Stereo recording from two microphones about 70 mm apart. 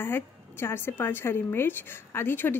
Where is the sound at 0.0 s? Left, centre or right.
Left.